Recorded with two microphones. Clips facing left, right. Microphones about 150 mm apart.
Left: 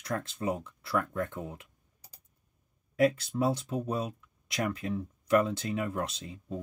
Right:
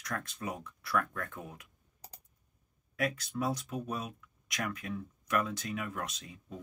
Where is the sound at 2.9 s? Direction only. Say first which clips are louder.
Left 8 dB; 30° left (ahead or behind).